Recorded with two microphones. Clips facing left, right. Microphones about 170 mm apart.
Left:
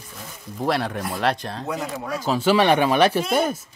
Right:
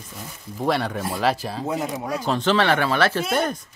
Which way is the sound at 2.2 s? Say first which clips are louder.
Left 3 dB; 5° left (ahead or behind).